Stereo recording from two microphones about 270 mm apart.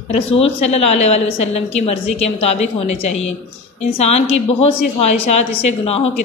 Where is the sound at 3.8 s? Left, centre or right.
Left.